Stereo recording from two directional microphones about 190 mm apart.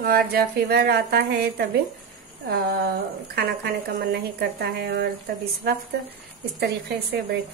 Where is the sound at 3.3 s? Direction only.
50° right (ahead or behind).